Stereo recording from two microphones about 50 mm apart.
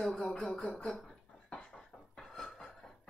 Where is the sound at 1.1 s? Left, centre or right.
Left.